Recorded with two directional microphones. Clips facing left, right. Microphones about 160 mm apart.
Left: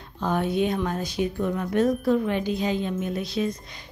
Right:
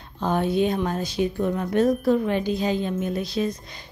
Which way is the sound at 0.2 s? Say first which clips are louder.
Right 2 dB; 30° right (ahead or behind).